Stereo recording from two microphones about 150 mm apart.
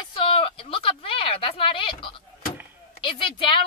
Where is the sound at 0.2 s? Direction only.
35° left (ahead or behind).